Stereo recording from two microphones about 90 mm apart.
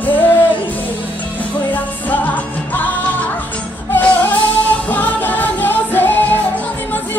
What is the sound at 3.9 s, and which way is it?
Music, 20° left (ahead or behind).